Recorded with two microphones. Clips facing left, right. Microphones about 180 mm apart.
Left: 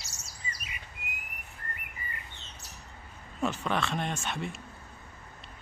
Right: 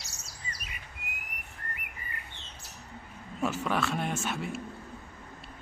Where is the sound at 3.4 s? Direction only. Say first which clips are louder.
Right 1 dB; 5° right (ahead or behind).